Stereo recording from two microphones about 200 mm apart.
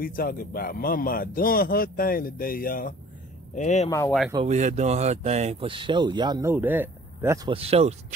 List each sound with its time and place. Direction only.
0.0 s a man's voice: 45° left (ahead or behind)
4.5 s speech: 35° right (ahead or behind); by 7.3 s 10° right (ahead or behind)
7.4 s speech: 30° right (ahead or behind)